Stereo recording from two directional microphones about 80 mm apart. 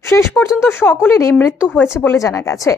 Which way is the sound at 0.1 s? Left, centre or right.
Left.